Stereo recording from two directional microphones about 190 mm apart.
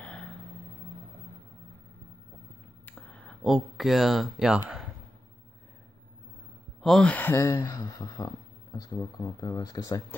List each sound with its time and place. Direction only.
0.0 s a sound: 5° left (ahead or behind)
2.8 s speech: 10° left (ahead or behind)
6.8 s speech: 5° left (ahead or behind); by 10.0 s 20° left (ahead or behind)